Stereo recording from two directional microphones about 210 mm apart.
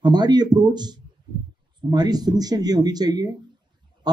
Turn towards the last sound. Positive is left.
turn(degrees=-20)  # may be behind; listen again after turning